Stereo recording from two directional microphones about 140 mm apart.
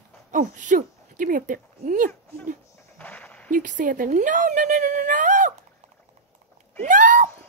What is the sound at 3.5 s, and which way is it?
Speech, 70° right (ahead or behind).